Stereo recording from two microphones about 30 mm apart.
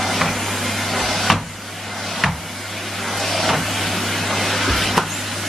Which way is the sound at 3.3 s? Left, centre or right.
Centre.